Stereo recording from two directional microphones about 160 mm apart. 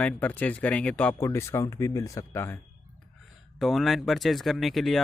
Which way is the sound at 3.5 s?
Centre (ahead or behind).